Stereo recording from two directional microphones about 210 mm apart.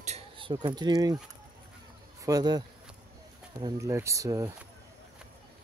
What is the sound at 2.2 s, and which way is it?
Speech, 20° right (ahead or behind).